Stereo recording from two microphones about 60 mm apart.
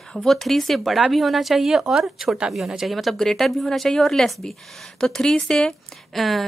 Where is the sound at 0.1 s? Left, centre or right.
Centre.